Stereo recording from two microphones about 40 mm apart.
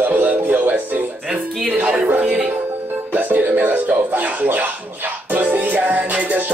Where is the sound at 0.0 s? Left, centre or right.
Right.